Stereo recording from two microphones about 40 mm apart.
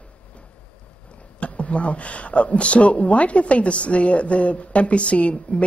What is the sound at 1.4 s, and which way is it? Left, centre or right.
Speech, left.